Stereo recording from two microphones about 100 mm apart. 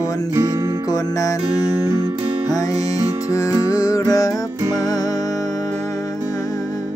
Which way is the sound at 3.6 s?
35° left (ahead or behind).